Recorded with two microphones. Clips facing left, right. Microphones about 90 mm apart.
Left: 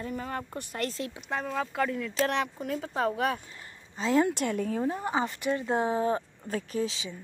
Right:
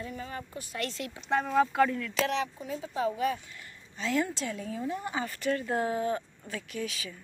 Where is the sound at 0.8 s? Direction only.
35° left (ahead or behind).